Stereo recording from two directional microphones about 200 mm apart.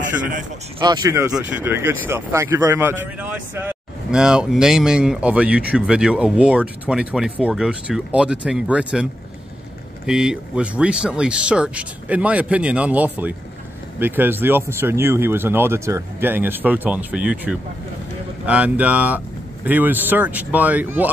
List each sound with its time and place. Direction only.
0.0 s speech: 40° right (ahead or behind)
0.7 s speech: 20° right (ahead or behind)